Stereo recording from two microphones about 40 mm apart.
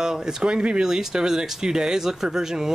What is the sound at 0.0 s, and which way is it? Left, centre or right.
Speech, centre.